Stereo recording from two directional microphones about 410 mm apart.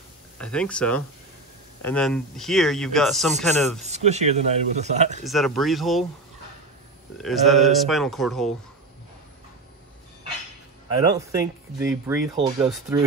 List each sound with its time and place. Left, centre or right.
0.4 s speech: centre
3.8 s speech: centre
5.2 s speech: centre
7.2 s speech: centre
11.0 s speech: centre